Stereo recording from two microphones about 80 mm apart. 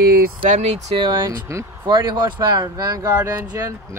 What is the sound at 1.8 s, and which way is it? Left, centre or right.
Speech, right.